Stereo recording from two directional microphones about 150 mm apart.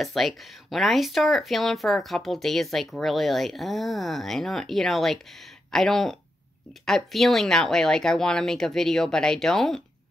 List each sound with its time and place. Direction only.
0.0 s speech: centre (ahead or behind)